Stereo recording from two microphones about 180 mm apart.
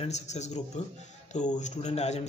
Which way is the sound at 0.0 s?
40° left (ahead or behind).